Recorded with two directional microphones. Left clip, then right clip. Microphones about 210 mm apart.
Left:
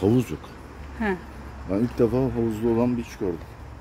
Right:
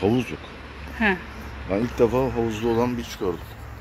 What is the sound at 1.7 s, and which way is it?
Speech, 50° left (ahead or behind).